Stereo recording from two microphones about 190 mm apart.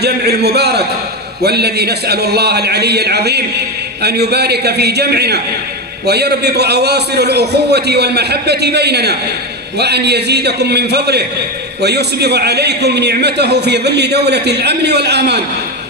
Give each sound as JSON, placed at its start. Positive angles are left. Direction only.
{"t": 0.0, "sound": "a man's voice", "side_deg": -60}